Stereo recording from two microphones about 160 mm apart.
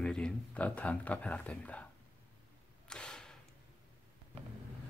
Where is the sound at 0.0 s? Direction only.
5° left (ahead or behind).